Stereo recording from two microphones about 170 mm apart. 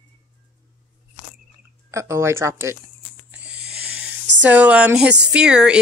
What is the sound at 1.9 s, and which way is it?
Speech, 15° right (ahead or behind).